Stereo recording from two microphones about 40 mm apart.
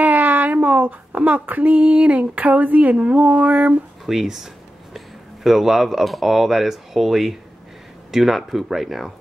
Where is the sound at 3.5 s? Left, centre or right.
Right.